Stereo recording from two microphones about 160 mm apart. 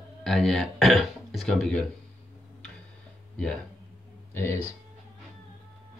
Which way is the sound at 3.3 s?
5° left (ahead or behind).